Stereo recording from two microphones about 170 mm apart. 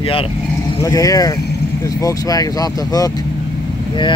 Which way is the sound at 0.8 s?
20° left (ahead or behind).